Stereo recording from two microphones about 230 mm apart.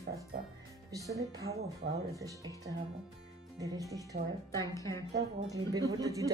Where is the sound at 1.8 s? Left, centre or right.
Right.